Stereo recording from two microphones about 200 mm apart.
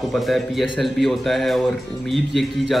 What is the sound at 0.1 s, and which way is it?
A man's voice, centre (ahead or behind).